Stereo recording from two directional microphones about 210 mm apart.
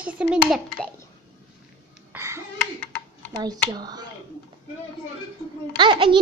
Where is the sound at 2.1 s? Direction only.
10° right (ahead or behind).